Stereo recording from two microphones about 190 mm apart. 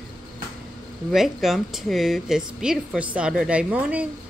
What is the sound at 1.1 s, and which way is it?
A woman's voice, centre (ahead or behind).